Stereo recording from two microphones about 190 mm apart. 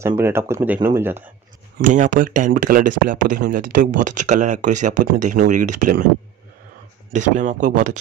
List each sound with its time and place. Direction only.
0.0 s speech: 15° right (ahead or behind)
1.8 s speech: 45° right (ahead or behind)
7.1 s speech: 40° right (ahead or behind)